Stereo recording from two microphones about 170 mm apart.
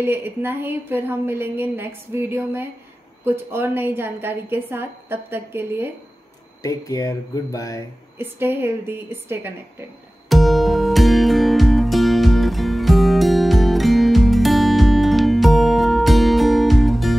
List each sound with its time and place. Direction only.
0.0 s a woman's voice: 10° right (ahead or behind)
6.6 s speech: 20° left (ahead or behind)
8.2 s a woman's voice: 15° right (ahead or behind)
10.3 s music: centre (ahead or behind)